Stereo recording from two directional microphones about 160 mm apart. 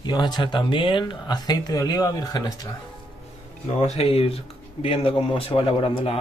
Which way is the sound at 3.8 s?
40° left (ahead or behind).